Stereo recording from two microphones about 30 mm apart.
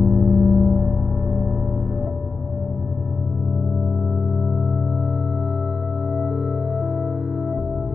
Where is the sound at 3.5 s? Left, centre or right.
Centre.